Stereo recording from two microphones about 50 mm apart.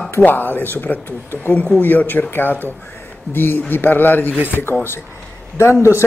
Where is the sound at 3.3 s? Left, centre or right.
Left.